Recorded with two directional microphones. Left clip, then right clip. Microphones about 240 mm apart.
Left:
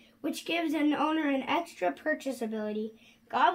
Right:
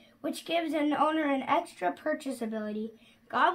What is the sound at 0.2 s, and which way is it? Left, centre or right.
Speech, right.